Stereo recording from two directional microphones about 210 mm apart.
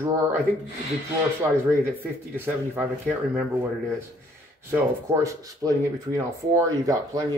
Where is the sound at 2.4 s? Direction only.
10° right (ahead or behind).